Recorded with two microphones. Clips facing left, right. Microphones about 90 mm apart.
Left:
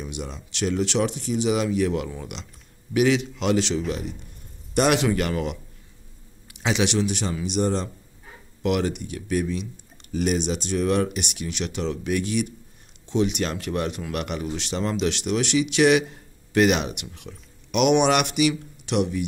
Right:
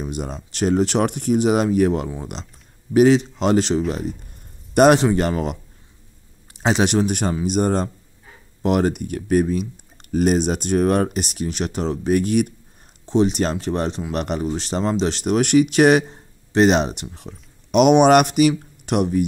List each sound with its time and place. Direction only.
0.0 s speech: 40° right (ahead or behind)
13.0 s speech: 35° right (ahead or behind)